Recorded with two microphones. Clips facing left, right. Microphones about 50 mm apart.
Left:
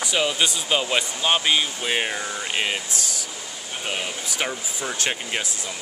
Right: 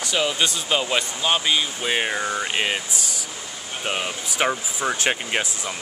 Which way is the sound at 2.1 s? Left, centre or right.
Right.